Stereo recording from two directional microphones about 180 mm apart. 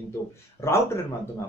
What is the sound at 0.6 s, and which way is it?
Speech, 15° left (ahead or behind).